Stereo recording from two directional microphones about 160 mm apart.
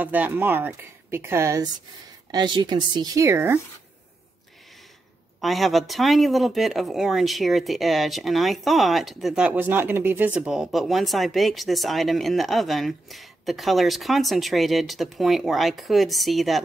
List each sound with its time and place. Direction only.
0.0 s a woman's voice: 10° right (ahead or behind)
5.4 s speech: centre (ahead or behind)